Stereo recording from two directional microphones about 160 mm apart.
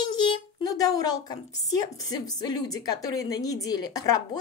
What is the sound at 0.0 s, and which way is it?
A woman's voice, 30° left (ahead or behind).